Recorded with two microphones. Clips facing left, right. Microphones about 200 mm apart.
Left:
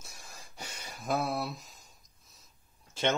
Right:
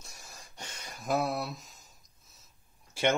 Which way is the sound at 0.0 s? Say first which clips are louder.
Even; centre (ahead or behind).